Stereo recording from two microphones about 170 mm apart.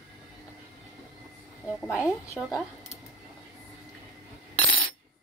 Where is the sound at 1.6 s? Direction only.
Centre (ahead or behind).